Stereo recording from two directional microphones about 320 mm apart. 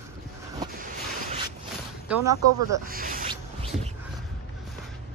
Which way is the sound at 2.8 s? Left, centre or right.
Right.